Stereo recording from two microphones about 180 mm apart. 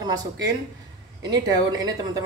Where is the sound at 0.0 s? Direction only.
20° right (ahead or behind).